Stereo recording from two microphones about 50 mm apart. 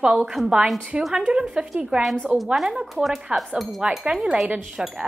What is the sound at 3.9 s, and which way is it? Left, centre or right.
Speech, centre.